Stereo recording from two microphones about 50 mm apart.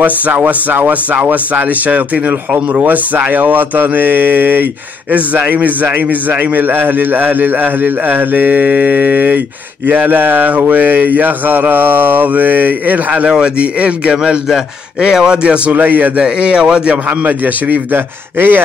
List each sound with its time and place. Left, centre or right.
0.0 s a man's voice: right
2.7 s a man's voice: right
13.3 s a man's voice: right
15.7 s a man's voice: right
16.2 s speech: right
17.2 s a man's voice: right